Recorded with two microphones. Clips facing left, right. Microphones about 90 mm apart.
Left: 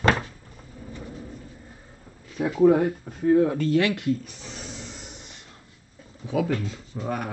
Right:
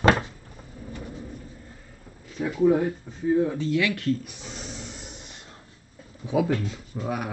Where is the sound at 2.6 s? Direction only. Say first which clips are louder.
Left 3 dB; 60° left (ahead or behind).